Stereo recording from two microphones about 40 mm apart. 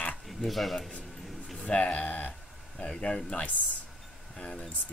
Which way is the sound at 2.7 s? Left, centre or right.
Left.